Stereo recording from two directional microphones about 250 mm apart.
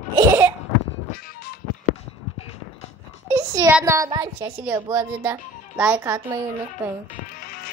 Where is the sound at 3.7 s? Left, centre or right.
Centre.